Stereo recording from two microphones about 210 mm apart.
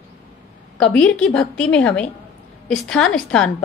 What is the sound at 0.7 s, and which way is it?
A woman's voice, 5° left (ahead or behind).